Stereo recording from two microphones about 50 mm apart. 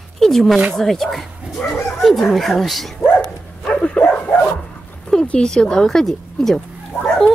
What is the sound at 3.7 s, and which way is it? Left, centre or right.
Bow-wow, left.